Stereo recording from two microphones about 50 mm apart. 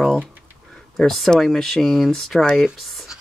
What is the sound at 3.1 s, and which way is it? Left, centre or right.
Music, centre.